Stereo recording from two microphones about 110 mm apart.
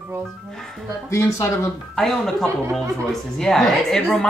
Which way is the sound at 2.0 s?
5° left (ahead or behind).